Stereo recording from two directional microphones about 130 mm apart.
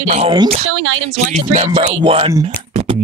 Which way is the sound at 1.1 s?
60° right (ahead or behind).